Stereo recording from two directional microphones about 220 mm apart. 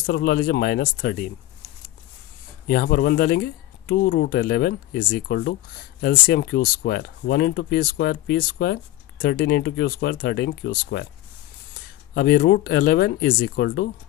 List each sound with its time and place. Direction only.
0.0 s speech: 45° left (ahead or behind)
2.7 s speech: 45° left (ahead or behind)
12.1 s speech: 45° left (ahead or behind)